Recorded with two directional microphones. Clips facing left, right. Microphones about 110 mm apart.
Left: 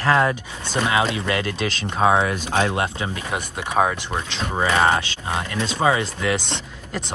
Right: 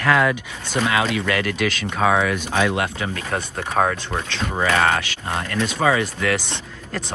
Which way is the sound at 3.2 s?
15° left (ahead or behind).